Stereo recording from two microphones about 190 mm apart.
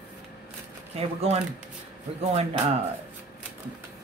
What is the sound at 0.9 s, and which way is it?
Speech, 30° right (ahead or behind).